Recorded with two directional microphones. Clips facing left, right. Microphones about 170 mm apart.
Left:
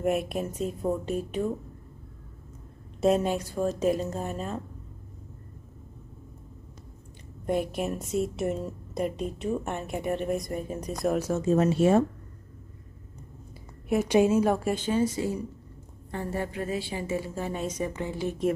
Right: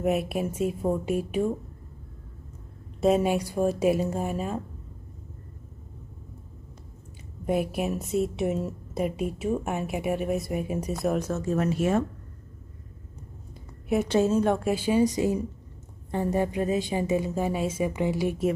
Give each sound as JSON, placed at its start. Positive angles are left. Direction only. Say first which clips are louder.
{"t": 0.0, "sound": "a woman's voice", "louder": "right 1 dB", "side_deg": 0}
{"t": 3.0, "sound": "a woman's voice", "louder": "right 2 dB", "side_deg": -5}
{"t": 7.4, "sound": "a woman's voice", "louder": "right 1 dB", "side_deg": -5}
{"t": 11.1, "sound": "a woman's voice", "louder": "left 1 dB", "side_deg": 10}
{"t": 11.4, "sound": "speech", "louder": "left 5 dB", "side_deg": 25}
{"t": 14.0, "sound": "a woman's voice", "louder": "left 2 dB", "side_deg": 15}
{"t": 14.4, "sound": "a woman's voice", "louder": "right 1 dB", "side_deg": 0}